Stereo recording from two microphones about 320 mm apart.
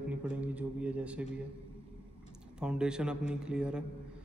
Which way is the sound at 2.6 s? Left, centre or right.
Centre.